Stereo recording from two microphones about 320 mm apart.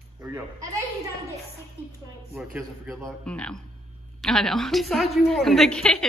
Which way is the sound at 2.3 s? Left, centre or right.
Centre.